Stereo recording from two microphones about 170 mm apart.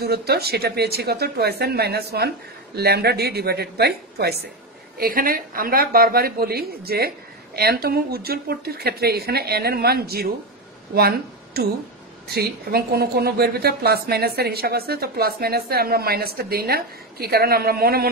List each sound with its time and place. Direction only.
0.0 s speech: 70° right (ahead or behind)
4.9 s a woman's voice: 60° right (ahead or behind)